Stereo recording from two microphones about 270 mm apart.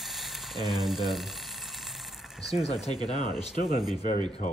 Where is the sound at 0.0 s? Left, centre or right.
Centre.